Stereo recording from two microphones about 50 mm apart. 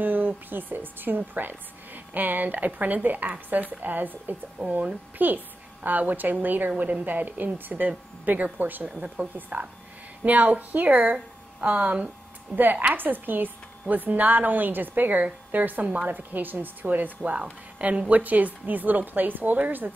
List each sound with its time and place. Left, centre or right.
0.0 s speech: right
4.6 s speech: centre
5.2 s speech: right
8.8 s a woman's voice: right